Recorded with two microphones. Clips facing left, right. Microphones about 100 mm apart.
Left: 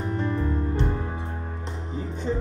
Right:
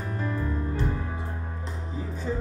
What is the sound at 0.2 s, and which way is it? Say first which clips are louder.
Music: left 2 dB; 25° left (ahead or behind).